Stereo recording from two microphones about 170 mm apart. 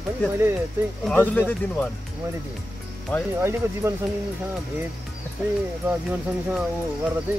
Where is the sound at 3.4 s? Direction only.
15° right (ahead or behind).